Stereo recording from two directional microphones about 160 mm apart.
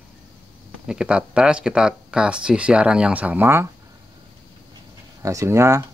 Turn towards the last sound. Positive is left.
turn(degrees=-15)  # may be behind; listen again after turning